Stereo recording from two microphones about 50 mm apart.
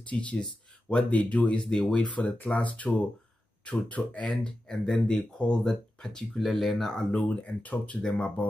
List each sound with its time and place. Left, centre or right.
0.1 s speech: left
1.5 s speech: centre
4.4 s speech: centre
7.1 s speech: left
8.0 s speech: centre